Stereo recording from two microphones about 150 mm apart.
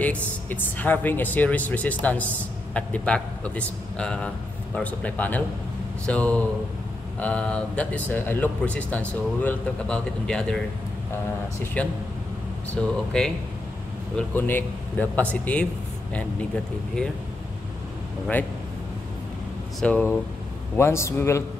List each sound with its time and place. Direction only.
0.0 s speech: 10° left (ahead or behind)
11.6 s speech: 10° left (ahead or behind)
19.8 s speech: 10° left (ahead or behind)